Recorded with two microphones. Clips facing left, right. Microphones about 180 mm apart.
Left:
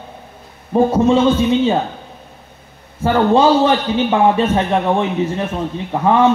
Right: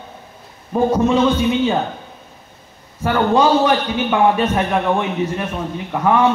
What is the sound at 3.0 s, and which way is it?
A man's voice, 30° left (ahead or behind).